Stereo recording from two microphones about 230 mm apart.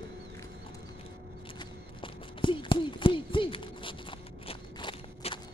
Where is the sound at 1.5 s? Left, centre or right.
Left.